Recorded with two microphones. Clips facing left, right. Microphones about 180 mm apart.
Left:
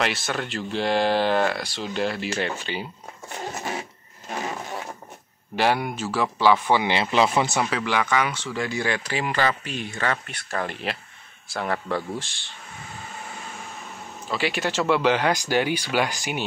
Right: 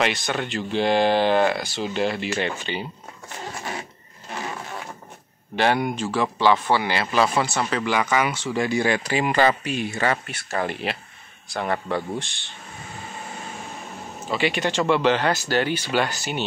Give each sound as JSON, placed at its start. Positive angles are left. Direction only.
{"t": 0.0, "sound": "speech", "side_deg": 0}
{"t": 5.6, "sound": "speech", "side_deg": 5}
{"t": 7.7, "sound": "speech", "side_deg": 0}
{"t": 14.3, "sound": "speech", "side_deg": 0}